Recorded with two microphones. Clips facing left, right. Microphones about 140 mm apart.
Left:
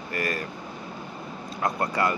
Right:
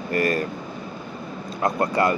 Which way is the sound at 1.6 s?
25° right (ahead or behind).